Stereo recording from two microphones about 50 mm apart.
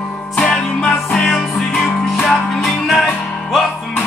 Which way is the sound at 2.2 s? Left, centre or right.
Centre.